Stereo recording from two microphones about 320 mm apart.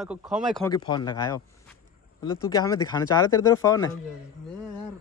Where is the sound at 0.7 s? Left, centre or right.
Centre.